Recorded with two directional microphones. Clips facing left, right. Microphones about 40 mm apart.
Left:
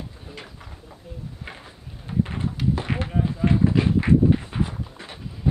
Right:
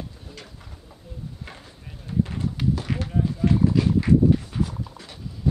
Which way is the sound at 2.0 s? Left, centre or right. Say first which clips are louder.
Even; left.